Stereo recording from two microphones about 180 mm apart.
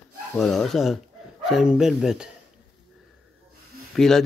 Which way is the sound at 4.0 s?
Centre (ahead or behind).